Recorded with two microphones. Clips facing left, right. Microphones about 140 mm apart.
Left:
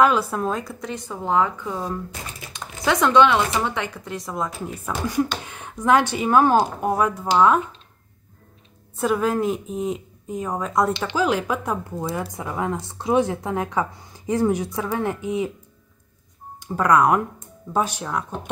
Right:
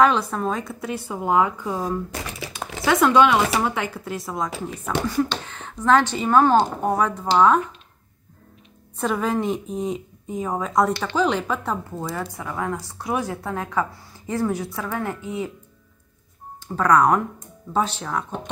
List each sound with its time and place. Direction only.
0.0 s speech: 5° left (ahead or behind)
5.0 s speech: 10° left (ahead or behind)
9.0 s speech: 5° left (ahead or behind)
10.9 s speech: 15° left (ahead or behind)
16.5 s speech: 10° left (ahead or behind)